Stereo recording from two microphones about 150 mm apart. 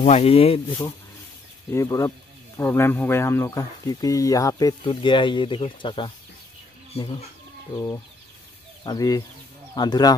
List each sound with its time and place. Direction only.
0.0 s speech: 45° left (ahead or behind)
1.7 s speech: 20° left (ahead or behind); by 7.2 s 40° left (ahead or behind)
8.8 s speech: 25° left (ahead or behind)